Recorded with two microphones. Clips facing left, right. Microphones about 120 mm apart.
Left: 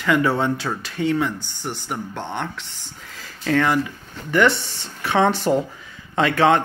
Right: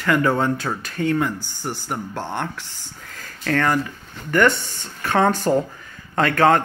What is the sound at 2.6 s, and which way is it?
Speech, 70° left (ahead or behind).